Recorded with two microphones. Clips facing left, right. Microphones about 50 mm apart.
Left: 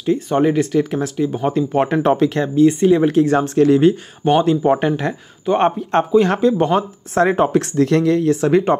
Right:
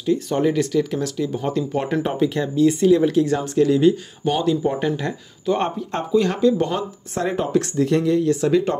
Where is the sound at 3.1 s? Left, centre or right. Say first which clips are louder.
Left 4 dB; left.